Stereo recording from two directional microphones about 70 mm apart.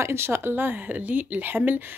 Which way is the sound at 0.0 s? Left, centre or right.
Right.